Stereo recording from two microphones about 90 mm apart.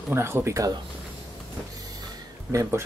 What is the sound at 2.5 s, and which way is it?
Speech, 30° right (ahead or behind).